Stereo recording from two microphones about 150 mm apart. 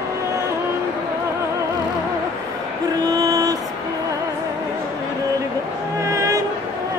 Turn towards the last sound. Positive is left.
turn(degrees=-20)  # may be behind; listen again after turning